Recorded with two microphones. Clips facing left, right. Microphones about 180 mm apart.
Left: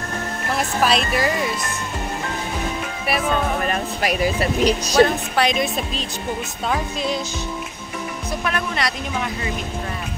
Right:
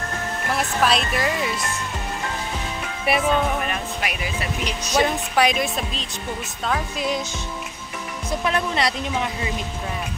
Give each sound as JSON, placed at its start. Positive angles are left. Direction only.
{"t": 0.8, "sound": "speech", "side_deg": 0}
{"t": 3.6, "sound": "speech", "side_deg": 40}
{"t": 5.0, "sound": "a woman's voice", "side_deg": -10}
{"t": 8.5, "sound": "speech", "side_deg": -25}